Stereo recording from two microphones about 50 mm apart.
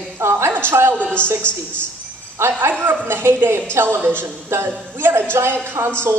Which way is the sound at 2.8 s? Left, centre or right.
Right.